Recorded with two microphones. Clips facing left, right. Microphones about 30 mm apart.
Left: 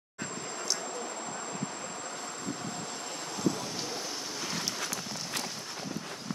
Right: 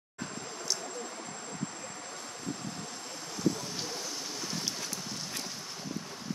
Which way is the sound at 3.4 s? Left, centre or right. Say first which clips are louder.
Even; centre.